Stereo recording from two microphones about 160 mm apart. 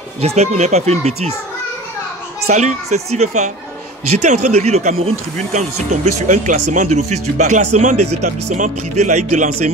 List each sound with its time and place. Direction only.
0.2 s speech: 40° right (ahead or behind)
2.4 s speech: 45° right (ahead or behind)